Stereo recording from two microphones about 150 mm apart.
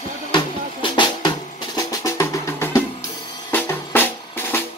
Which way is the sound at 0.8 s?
30° left (ahead or behind).